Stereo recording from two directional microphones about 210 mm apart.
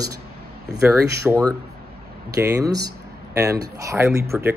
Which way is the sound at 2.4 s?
15° right (ahead or behind).